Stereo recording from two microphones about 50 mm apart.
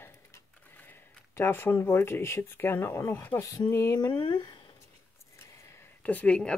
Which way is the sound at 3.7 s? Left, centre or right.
Left.